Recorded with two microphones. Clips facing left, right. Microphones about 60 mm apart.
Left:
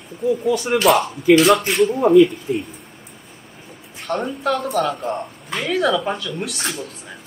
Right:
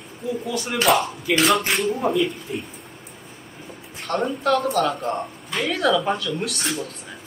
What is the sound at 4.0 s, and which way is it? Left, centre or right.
Speech, centre.